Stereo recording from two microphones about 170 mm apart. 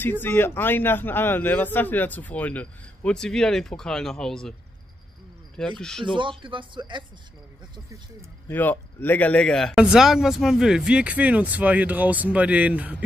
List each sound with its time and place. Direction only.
0.0 s a man's voice: 10° left (ahead or behind)
5.8 s speech: 5° left (ahead or behind)
6.1 s speech: 30° right (ahead or behind)
8.5 s speech: 10° left (ahead or behind); by 13.0 s 10° right (ahead or behind)